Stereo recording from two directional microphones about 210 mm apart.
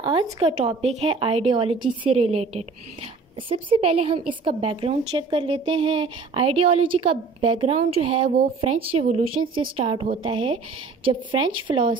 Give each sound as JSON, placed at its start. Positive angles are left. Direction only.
{"t": 0.0, "sound": "a woman's voice", "side_deg": -20}
{"t": 11.6, "sound": "a woman's voice", "side_deg": -25}